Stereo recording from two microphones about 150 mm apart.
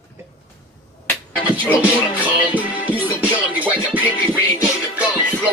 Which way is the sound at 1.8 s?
10° right (ahead or behind).